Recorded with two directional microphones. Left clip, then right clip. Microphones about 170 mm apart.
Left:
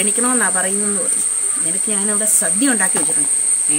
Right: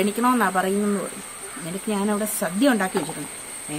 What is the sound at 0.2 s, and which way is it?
Speech, 10° right (ahead or behind).